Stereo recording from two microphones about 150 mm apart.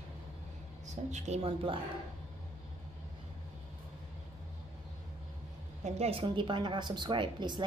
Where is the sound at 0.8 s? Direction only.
50° right (ahead or behind).